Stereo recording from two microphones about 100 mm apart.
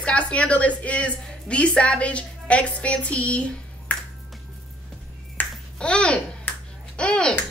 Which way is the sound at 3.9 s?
15° left (ahead or behind).